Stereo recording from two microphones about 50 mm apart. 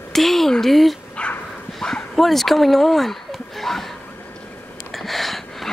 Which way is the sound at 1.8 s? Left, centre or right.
Centre.